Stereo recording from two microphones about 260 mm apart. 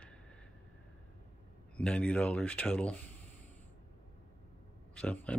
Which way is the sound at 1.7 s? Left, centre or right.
Centre.